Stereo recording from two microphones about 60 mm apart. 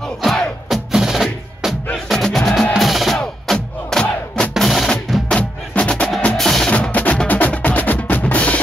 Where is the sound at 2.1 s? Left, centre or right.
Centre.